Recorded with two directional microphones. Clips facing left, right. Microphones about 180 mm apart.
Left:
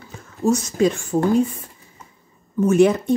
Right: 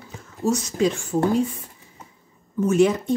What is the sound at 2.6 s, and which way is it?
Speech, 55° left (ahead or behind).